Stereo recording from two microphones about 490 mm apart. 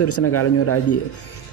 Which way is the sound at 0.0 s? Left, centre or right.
Left.